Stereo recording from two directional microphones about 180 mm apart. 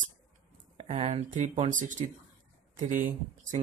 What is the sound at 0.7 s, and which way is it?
Speech, 40° right (ahead or behind).